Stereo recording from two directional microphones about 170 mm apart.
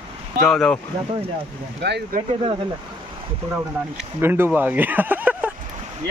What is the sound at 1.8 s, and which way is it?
Speech, 80° right.